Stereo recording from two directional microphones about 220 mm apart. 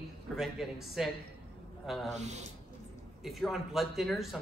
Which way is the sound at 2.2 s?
30° right (ahead or behind).